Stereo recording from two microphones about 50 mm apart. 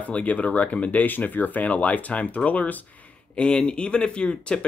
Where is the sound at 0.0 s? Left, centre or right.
Left.